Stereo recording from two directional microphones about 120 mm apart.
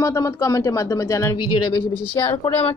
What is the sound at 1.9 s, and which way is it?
Speech, 20° left (ahead or behind).